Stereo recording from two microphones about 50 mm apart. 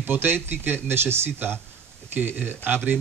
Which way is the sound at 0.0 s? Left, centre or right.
Right.